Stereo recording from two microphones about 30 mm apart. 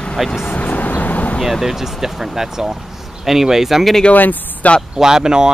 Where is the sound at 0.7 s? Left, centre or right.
Left.